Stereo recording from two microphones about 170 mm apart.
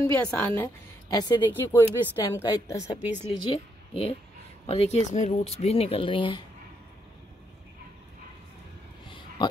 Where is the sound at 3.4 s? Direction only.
35° left (ahead or behind).